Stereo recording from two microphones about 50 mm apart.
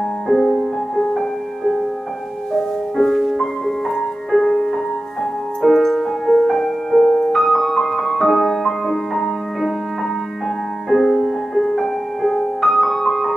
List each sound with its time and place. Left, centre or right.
0.3 s music: centre
5.6 s music: centre
10.9 s music: centre